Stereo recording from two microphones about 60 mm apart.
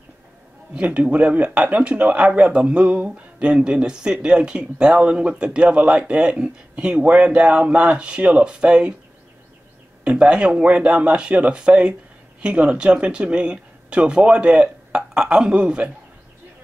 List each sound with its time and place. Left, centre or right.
0.7 s a man's voice: right
10.0 s speech: centre